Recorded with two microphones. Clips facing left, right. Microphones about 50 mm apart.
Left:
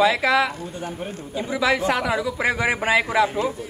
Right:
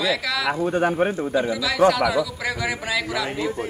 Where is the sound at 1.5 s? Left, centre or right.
Left.